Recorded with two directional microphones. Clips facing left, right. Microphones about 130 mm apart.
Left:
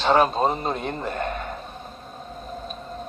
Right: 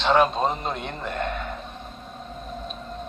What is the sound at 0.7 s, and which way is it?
Speech, 40° left (ahead or behind).